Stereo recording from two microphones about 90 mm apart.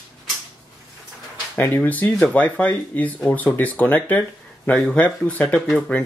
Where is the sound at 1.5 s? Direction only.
20° left (ahead or behind).